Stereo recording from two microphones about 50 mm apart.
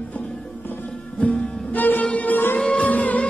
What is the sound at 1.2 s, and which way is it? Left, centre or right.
Music, left.